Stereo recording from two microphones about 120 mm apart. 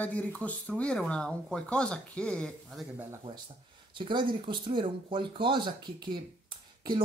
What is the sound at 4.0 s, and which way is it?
Speech, 45° right (ahead or behind).